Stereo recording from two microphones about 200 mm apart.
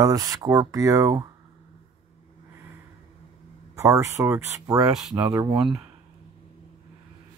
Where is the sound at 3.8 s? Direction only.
15° right (ahead or behind).